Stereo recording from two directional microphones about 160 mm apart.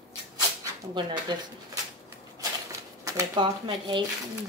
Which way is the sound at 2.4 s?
20° right (ahead or behind).